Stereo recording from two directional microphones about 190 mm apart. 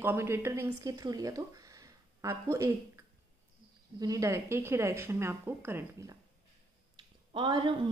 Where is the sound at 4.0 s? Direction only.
15° right (ahead or behind).